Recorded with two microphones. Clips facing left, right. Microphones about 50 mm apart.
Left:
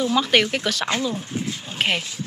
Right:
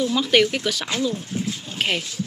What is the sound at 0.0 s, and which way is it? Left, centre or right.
Speech, centre.